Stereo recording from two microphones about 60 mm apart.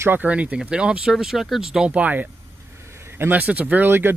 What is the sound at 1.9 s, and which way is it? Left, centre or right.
Speech, right.